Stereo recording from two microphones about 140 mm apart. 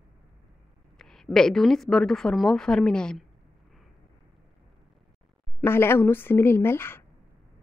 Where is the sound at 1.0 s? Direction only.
5° left (ahead or behind).